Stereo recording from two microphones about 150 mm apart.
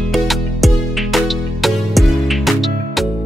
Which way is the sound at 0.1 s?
Centre (ahead or behind).